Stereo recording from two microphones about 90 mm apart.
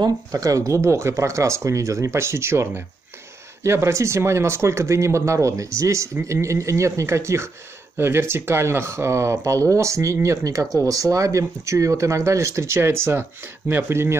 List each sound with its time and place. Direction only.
0.0 s speech: 40° right (ahead or behind)